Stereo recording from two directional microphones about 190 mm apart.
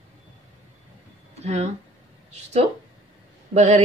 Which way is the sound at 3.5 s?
35° right (ahead or behind).